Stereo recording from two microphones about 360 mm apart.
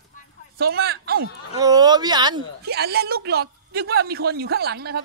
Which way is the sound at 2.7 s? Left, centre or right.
Right.